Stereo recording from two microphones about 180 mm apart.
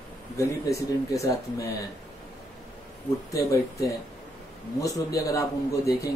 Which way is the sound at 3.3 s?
20° left (ahead or behind).